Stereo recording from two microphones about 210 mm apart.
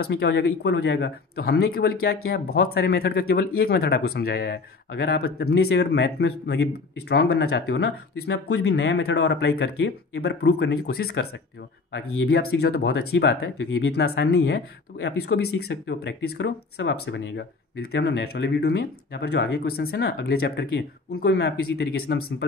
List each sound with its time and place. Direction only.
0.0 s speech: 50° left (ahead or behind)